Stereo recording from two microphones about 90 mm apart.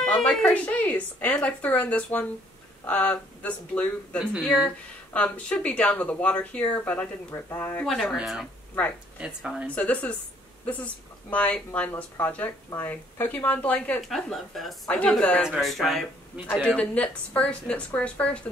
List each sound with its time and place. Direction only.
0.0 s speech: 10° left (ahead or behind)
7.8 s speech: 5° left (ahead or behind)
9.8 s speech: 15° left (ahead or behind)
11.2 s speech: 15° left (ahead or behind)
14.0 s speech: centre (ahead or behind)
15.0 s speech: 10° left (ahead or behind)
15.5 s speech: centre (ahead or behind)
16.6 s speech: 10° left (ahead or behind)